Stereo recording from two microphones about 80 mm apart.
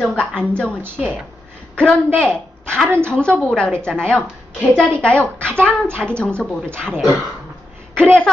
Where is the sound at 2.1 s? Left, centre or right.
Centre.